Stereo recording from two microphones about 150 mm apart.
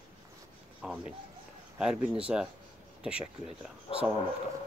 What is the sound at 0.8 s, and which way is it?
Speech, 5° right (ahead or behind).